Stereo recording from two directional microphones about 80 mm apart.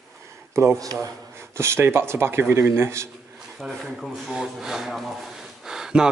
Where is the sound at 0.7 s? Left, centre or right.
Right.